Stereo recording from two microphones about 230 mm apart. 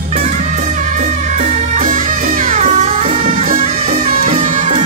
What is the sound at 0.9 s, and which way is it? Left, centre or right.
Music, right.